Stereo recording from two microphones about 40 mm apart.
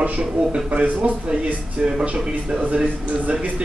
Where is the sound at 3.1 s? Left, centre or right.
Right.